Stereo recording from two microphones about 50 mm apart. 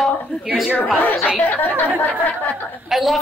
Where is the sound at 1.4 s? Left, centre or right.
Left.